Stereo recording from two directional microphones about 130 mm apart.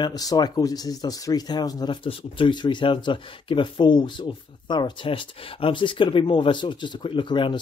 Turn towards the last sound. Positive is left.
turn(degrees=40)  # may be behind; listen again after turning